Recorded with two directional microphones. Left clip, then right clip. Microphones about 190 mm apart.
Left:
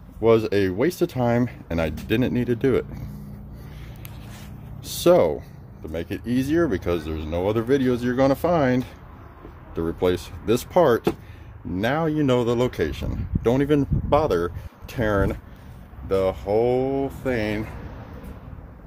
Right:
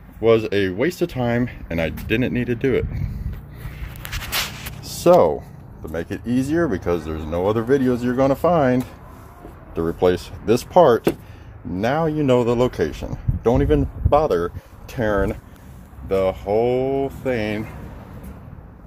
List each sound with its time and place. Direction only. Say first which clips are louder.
0.2 s speech: right 2 dB; 15° left (ahead or behind)
5.1 s speech: right 4 dB; 20° left (ahead or behind)
7.2 s speech: right 3 dB; 10° left (ahead or behind)
13.4 s speech: right 2 dB; 25° left (ahead or behind)
16.2 s speech: right 2 dB; 5° left (ahead or behind)